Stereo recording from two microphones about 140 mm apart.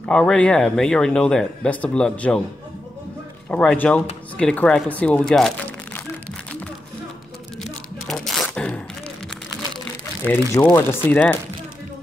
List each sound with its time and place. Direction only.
0.0 s speech: 10° left (ahead or behind)
3.4 s speech: 10° left (ahead or behind)
7.6 s a sound: 5° left (ahead or behind)
10.5 s speech: 20° left (ahead or behind)